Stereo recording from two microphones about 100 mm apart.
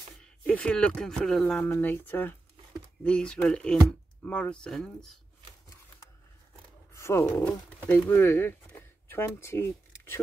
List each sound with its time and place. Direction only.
0.2 s speech: 10° left (ahead or behind)
6.9 s a sound: 25° left (ahead or behind)
7.2 s speech: 20° left (ahead or behind)